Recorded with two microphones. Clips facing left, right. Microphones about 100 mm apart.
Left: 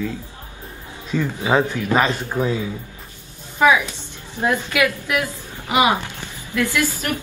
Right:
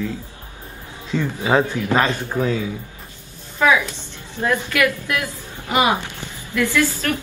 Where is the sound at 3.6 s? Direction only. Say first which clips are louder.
Left 1 dB; 15° left (ahead or behind).